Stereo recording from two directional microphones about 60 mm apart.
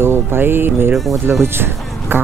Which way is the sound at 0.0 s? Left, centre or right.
Right.